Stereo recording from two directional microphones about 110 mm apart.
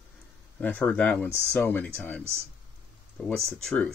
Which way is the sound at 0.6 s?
15° left (ahead or behind).